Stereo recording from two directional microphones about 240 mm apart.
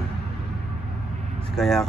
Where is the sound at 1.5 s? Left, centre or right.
Centre.